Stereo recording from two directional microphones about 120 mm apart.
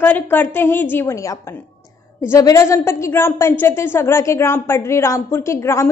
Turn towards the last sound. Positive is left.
turn(degrees=20)  # may be behind; listen again after turning